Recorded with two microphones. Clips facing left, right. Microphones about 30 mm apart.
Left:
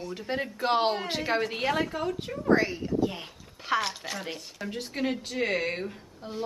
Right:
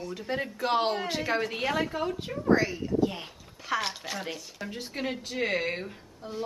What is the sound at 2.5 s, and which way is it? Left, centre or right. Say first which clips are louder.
Speech: left 1 dB; centre.